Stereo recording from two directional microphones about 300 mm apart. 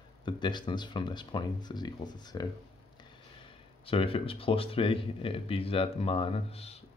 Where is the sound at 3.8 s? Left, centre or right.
Centre.